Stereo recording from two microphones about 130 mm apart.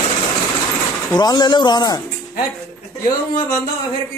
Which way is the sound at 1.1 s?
30° left (ahead or behind).